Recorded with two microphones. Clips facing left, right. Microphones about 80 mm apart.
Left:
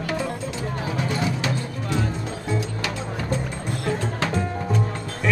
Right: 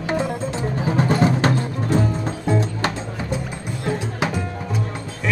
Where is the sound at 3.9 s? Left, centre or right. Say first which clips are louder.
Right 2 dB; centre.